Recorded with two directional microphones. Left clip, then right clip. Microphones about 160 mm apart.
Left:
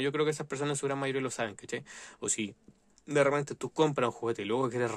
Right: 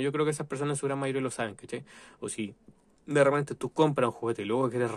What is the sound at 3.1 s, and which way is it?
Speech, 5° left (ahead or behind).